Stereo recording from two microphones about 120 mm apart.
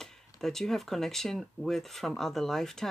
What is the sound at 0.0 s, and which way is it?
Speech, 5° left (ahead or behind).